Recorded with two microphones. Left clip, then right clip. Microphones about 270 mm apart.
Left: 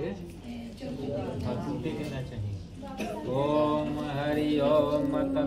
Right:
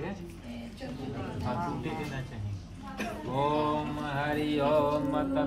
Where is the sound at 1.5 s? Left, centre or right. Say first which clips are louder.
Right 4 dB; centre.